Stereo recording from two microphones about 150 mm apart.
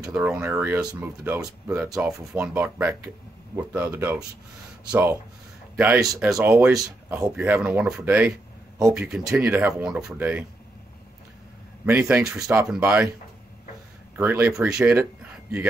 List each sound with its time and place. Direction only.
0.1 s speech: 10° right (ahead or behind)
2.1 s speech: 10° right (ahead or behind)
5.9 s speech: 20° right (ahead or behind)
6.3 s speech: 5° right (ahead or behind)
9.4 s speech: 15° right (ahead or behind)
9.8 s speech: 5° right (ahead or behind)
11.8 s speech: 15° right (ahead or behind)
12.2 s speech: 5° right (ahead or behind)
14.1 s speech: 10° right (ahead or behind)